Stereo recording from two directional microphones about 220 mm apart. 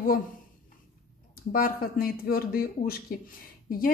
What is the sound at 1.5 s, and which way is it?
Speech, 40° left (ahead or behind).